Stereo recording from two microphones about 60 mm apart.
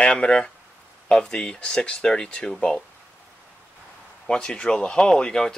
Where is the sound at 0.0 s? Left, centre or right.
Centre.